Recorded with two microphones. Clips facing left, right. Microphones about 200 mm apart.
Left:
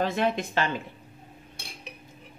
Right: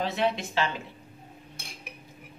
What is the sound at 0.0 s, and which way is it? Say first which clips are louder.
Speech: left 2 dB; 50° left (ahead or behind).